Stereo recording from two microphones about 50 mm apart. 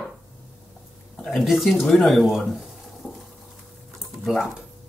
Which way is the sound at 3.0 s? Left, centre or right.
Centre.